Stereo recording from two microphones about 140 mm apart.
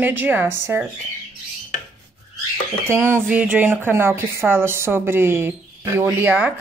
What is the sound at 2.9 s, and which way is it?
Speech, 20° right (ahead or behind).